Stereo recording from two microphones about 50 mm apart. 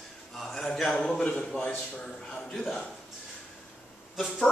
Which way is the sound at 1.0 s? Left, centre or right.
Centre.